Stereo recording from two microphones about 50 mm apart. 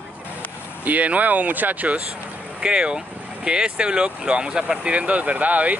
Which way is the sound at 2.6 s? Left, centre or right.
Centre.